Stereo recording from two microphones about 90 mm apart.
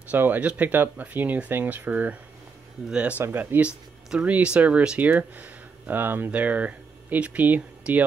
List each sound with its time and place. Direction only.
0.1 s speech: 20° right (ahead or behind)